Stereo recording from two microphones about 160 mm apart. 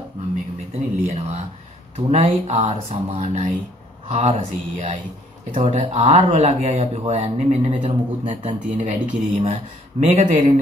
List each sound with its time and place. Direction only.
1.0 s speech: 45° right (ahead or behind)